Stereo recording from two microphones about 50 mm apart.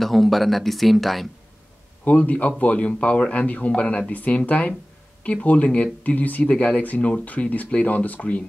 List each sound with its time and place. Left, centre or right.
0.0 s speech: centre
2.0 s speech: left